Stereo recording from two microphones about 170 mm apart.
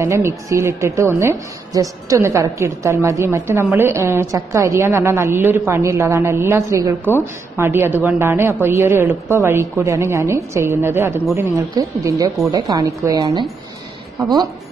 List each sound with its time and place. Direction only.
0.0 s a woman's voice: 15° right (ahead or behind)